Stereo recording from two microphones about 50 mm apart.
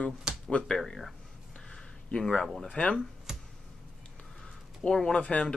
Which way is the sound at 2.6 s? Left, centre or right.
Left.